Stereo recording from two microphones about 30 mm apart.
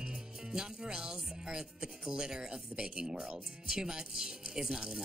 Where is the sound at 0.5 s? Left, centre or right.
Right.